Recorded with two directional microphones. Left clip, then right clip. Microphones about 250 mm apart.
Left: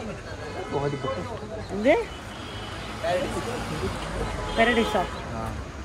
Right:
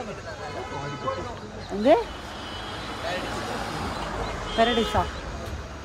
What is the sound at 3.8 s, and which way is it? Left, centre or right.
Speech, right.